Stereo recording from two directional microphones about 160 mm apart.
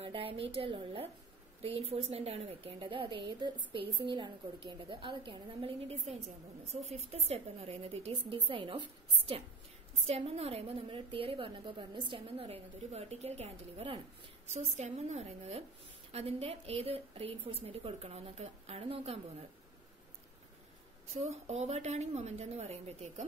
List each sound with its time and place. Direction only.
0.0 s a woman's voice: 35° right (ahead or behind)
10.0 s a woman's voice: 40° right (ahead or behind)
21.3 s a woman's voice: 40° right (ahead or behind)